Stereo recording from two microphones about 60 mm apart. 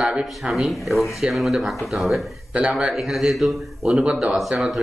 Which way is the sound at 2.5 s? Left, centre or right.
Centre.